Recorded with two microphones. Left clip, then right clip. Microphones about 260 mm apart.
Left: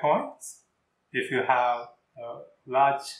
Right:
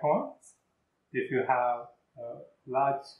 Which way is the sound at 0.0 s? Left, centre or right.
Centre.